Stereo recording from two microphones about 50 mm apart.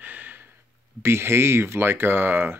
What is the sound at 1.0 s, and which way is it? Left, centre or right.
Speech, right.